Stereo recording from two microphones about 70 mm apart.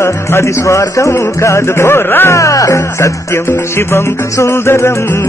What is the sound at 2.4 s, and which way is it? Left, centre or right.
Music, left.